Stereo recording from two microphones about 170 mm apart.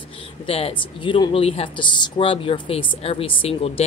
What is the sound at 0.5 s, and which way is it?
Speech, 35° left (ahead or behind).